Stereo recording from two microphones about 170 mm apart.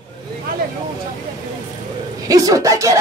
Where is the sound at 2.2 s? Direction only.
20° right (ahead or behind).